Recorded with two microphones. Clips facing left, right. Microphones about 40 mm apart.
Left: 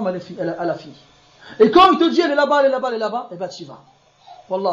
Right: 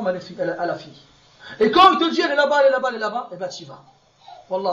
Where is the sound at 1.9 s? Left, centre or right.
Right.